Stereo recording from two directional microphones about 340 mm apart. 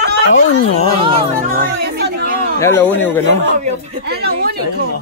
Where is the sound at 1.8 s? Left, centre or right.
Right.